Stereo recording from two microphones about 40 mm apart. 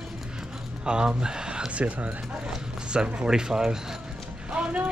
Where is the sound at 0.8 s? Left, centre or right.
Right.